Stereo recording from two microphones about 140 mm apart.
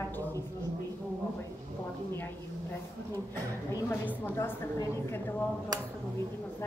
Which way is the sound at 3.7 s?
20° left (ahead or behind).